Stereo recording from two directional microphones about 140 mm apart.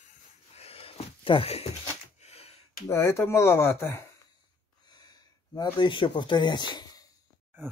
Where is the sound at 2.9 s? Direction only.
20° left (ahead or behind).